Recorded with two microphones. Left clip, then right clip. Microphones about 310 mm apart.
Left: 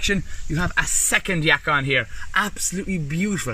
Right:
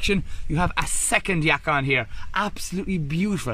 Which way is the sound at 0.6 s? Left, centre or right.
Centre.